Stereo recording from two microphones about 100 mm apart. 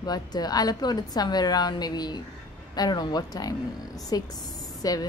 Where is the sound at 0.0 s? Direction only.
40° left (ahead or behind).